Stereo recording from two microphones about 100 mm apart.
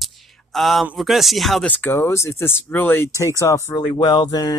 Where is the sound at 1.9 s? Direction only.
30° left (ahead or behind).